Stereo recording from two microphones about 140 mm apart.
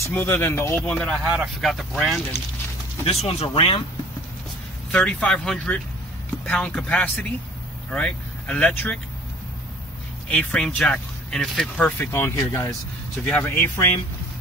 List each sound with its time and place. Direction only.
0.0 s speech: 15° left (ahead or behind)
1.2 s speech: 5° right (ahead or behind)
3.1 s speech: 45° left (ahead or behind)
4.9 s speech: 5° left (ahead or behind)
10.3 s speech: 5° left (ahead or behind)
12.0 s speech: 15° left (ahead or behind)